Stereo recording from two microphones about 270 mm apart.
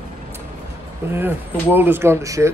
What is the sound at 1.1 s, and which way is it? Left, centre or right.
Speech, centre.